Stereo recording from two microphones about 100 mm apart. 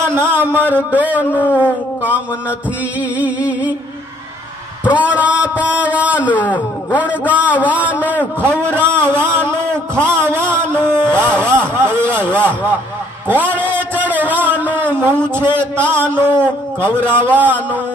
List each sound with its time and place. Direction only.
0.1 s a man's voice: 20° right (ahead or behind)
1.3 s a sound: 20° left (ahead or behind)
1.6 s a man's voice: 15° right (ahead or behind)
4.8 s a man's voice: 15° right (ahead or behind)
9.0 s a sound: 20° right (ahead or behind)
15.9 s a man's voice: 20° right (ahead or behind)